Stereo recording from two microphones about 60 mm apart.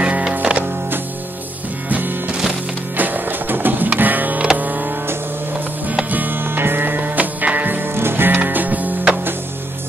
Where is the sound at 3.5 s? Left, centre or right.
Right.